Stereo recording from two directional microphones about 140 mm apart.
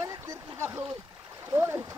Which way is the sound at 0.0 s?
25° right (ahead or behind).